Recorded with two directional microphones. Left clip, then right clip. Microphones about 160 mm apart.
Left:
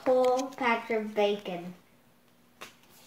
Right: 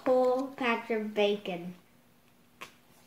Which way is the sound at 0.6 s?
25° right (ahead or behind).